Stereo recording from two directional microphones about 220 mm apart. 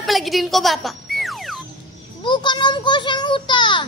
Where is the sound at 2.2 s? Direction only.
20° left (ahead or behind).